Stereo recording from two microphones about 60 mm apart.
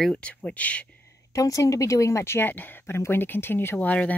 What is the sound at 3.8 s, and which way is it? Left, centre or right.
Speech, left.